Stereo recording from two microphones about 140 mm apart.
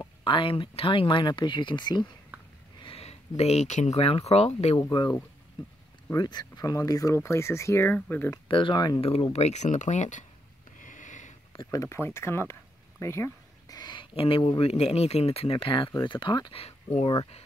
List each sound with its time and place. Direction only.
0.0 s speech: 35° left (ahead or behind)
2.8 s speech: 45° left (ahead or behind)
6.1 s speech: 30° left (ahead or behind); by 8.3 s 15° left (ahead or behind)
8.5 s speech: 35° left (ahead or behind)
9.1 s speech: 50° left (ahead or behind)
10.8 s sniff: 65° left (ahead or behind)
11.5 s speech: 25° left (ahead or behind)
13.0 s a sound: 20° left (ahead or behind); by 14.5 s 40° left (ahead or behind)
14.6 s speech: 45° left (ahead or behind)
16.5 s speech: 45° left (ahead or behind)